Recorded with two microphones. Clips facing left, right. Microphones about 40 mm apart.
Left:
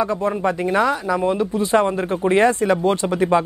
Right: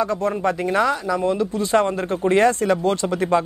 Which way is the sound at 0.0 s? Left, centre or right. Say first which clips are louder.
Left 1 dB; centre.